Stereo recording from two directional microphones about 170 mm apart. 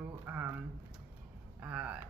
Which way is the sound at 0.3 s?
10° right (ahead or behind).